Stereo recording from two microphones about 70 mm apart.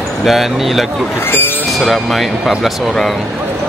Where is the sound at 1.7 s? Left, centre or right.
Centre.